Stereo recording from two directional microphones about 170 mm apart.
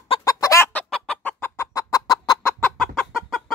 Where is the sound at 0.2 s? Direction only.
20° left (ahead or behind).